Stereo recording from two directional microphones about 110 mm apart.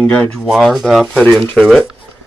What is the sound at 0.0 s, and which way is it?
Speech, 10° left (ahead or behind).